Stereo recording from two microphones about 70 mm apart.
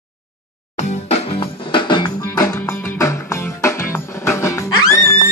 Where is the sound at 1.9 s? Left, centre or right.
Left.